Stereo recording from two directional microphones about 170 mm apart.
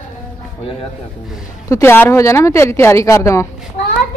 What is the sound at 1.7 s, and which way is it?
Speech, 15° left (ahead or behind).